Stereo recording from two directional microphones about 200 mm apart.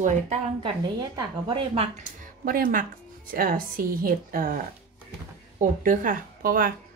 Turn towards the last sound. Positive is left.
turn(degrees=-45)  # may be behind; listen again after turning